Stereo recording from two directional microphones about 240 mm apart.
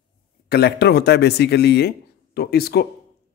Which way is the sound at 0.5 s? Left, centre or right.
Left.